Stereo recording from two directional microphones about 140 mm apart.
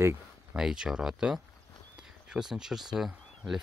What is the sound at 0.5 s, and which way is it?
Speech, 5° right (ahead or behind).